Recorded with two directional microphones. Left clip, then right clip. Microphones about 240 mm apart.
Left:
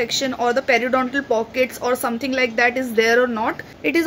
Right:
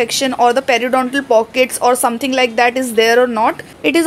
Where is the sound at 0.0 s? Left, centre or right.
Centre.